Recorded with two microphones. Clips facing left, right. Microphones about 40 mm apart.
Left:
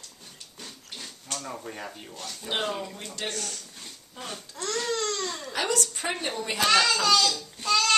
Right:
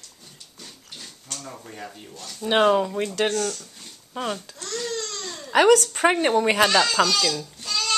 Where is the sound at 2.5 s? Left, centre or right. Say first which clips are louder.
Right 12 dB; right.